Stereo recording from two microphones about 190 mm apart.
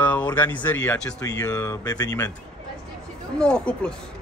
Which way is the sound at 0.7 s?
10° left (ahead or behind).